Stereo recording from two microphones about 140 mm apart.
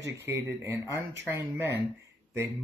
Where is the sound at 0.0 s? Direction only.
20° right (ahead or behind).